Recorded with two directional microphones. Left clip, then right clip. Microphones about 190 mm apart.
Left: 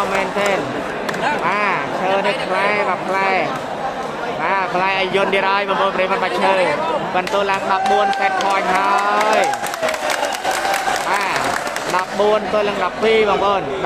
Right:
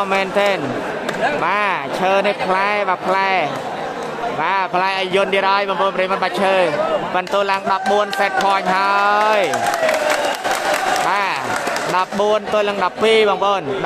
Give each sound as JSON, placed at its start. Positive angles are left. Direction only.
{"t": 0.1, "sound": "a man's voice", "side_deg": -40}
{"t": 4.5, "sound": "a man's voice", "side_deg": -40}
{"t": 12.2, "sound": "a man's voice", "side_deg": -40}